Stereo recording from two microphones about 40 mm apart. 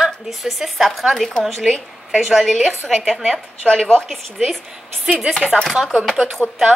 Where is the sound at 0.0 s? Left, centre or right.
Centre.